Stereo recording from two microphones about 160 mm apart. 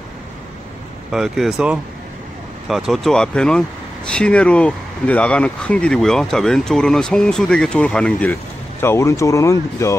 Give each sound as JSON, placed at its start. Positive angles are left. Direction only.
{"t": 1.1, "sound": "speech", "side_deg": 0}